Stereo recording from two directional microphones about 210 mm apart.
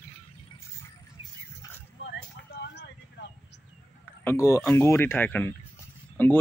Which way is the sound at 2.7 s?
55° left (ahead or behind).